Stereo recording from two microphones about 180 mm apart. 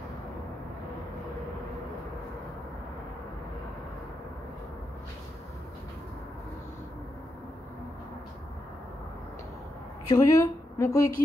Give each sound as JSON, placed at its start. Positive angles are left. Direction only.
{"t": 10.0, "sound": "speech", "side_deg": 20}